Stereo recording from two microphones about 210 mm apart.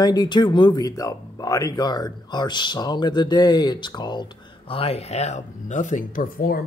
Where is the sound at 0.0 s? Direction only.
20° left (ahead or behind).